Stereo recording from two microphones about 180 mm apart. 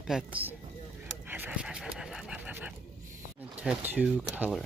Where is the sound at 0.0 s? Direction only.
5° right (ahead or behind).